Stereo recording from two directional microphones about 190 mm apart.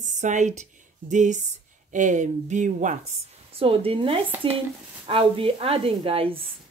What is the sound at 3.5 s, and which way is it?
A woman's voice, 30° right (ahead or behind).